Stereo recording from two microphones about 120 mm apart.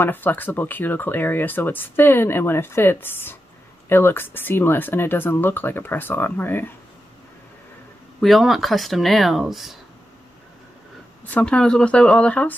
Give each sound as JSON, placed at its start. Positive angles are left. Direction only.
{"t": 0.0, "sound": "speech", "side_deg": 15}
{"t": 8.2, "sound": "speech", "side_deg": 0}
{"t": 11.2, "sound": "speech", "side_deg": 10}